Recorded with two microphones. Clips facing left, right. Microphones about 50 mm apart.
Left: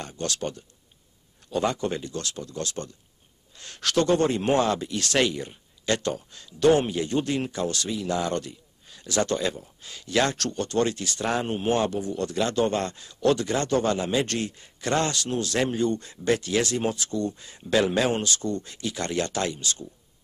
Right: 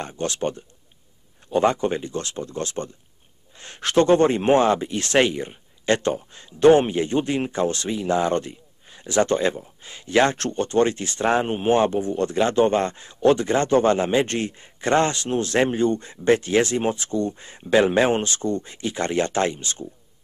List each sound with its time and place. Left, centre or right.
0.0 s speech: right